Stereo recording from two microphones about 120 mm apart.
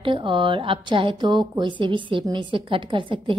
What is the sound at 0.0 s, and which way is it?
A woman's voice, 45° right (ahead or behind).